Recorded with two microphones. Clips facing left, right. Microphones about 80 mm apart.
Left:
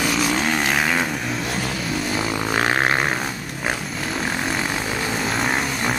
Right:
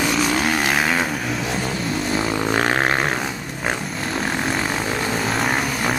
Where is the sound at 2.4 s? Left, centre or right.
Centre.